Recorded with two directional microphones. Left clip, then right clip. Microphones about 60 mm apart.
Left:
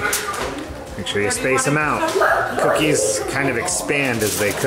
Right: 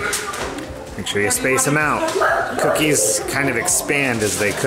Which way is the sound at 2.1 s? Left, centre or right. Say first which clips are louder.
Left 3 dB; centre.